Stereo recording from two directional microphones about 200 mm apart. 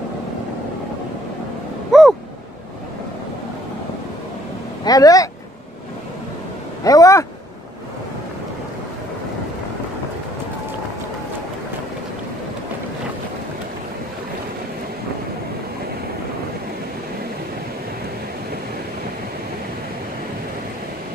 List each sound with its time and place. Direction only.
1.9 s owl: centre (ahead or behind)
4.8 s speech: 20° left (ahead or behind)
6.8 s speech: 15° left (ahead or behind)